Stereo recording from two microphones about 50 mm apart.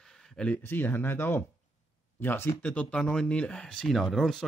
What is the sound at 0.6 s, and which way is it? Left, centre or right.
Speech, left.